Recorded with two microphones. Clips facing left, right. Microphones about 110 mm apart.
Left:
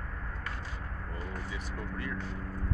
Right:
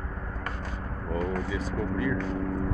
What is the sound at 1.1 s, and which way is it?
Speech, 90° right.